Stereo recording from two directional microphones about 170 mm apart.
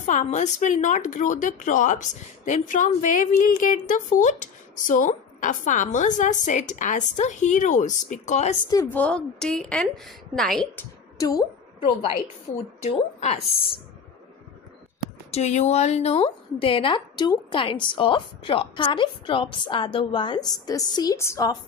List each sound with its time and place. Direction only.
0.0 s a woman's voice: 45° left (ahead or behind)
8.6 s a woman's voice: 20° left (ahead or behind)
8.9 s a woman's voice: 5° left (ahead or behind)
11.1 s a woman's voice: 20° left (ahead or behind)
13.2 s a woman's voice: 35° left (ahead or behind)
15.3 s a woman's voice: 40° left (ahead or behind); by 21.5 s 20° left (ahead or behind)